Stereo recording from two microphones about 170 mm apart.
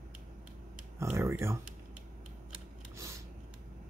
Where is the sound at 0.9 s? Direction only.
15° right (ahead or behind).